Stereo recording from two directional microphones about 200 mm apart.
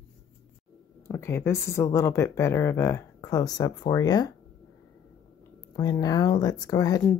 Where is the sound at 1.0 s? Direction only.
10° left (ahead or behind).